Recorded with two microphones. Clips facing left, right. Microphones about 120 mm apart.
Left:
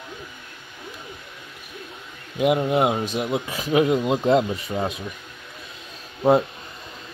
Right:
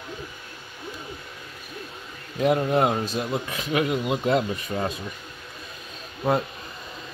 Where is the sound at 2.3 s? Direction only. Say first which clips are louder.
Left 1 dB; 10° left (ahead or behind).